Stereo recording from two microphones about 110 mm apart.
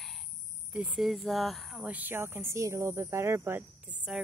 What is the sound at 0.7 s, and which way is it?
Cricket, 15° right (ahead or behind).